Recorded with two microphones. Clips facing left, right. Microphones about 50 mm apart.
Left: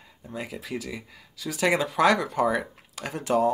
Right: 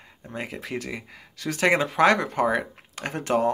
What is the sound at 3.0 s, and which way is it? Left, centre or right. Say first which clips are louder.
Speech: even; right.